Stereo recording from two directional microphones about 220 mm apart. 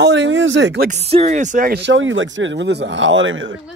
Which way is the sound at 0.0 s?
55° right (ahead or behind).